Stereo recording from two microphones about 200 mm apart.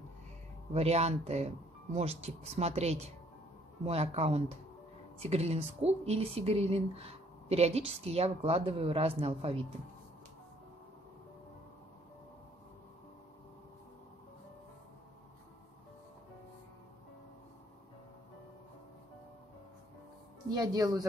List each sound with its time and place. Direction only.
0.7 s speech: 30° right (ahead or behind)
20.5 s speech: 20° right (ahead or behind)